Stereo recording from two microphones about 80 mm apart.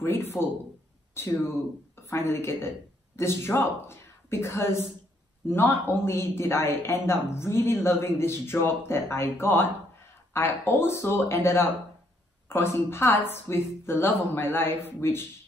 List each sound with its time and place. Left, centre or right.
0.0 s speech: left